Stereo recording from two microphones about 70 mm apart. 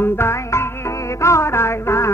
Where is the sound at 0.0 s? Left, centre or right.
Left.